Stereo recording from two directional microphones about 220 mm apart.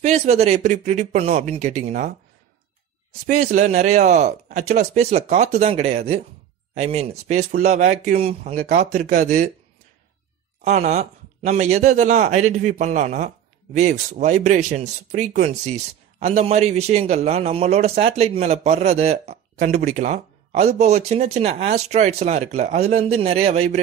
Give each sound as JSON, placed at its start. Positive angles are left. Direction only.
{"t": 0.0, "sound": "speech", "side_deg": -30}
{"t": 3.3, "sound": "speech", "side_deg": -35}
{"t": 10.6, "sound": "speech", "side_deg": -30}